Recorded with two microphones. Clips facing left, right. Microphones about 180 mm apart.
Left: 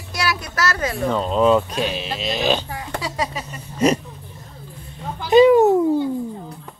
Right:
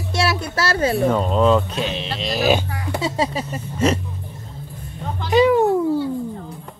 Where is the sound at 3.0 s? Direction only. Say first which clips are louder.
Right 6 dB; 30° right (ahead or behind).